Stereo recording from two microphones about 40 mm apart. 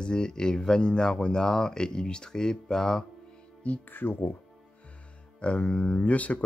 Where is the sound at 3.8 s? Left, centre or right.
Left.